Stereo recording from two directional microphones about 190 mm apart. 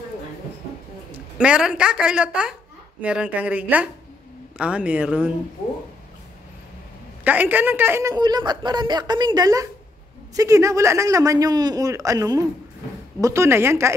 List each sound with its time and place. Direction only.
1.4 s a woman's voice: 5° right (ahead or behind)
7.2 s a woman's voice: 10° right (ahead or behind)